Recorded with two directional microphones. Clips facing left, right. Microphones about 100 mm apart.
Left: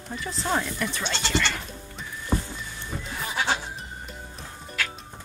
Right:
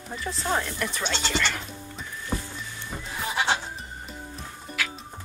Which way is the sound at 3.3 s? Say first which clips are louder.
Right 1 dB; centre (ahead or behind).